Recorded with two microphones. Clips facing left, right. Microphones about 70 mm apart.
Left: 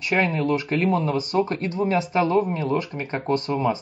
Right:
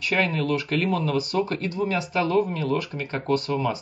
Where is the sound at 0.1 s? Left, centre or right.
Left.